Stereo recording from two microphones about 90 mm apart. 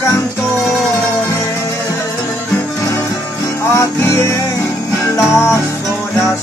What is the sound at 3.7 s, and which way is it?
Music, 30° left (ahead or behind).